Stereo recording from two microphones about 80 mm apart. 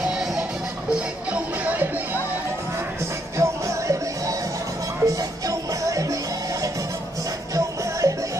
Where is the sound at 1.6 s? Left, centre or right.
Right.